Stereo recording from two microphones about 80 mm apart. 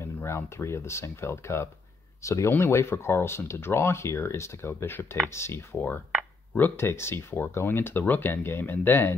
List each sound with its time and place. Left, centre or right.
0.0 s speech: left